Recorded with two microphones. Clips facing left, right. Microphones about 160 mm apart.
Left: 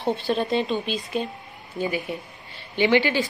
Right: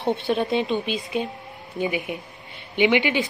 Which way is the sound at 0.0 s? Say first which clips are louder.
Right 1 dB; 20° right (ahead or behind).